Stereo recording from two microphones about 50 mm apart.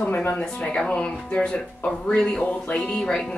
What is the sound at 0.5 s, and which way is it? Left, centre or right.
Speech, centre.